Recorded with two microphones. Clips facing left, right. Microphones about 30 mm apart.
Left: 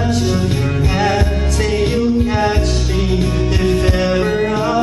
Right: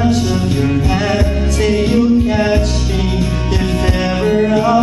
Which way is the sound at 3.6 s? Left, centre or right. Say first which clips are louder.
Left 1 dB; centre.